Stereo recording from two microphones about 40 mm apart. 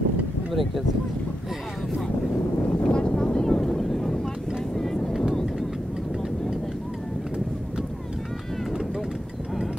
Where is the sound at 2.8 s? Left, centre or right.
Left; by 4.1 s centre.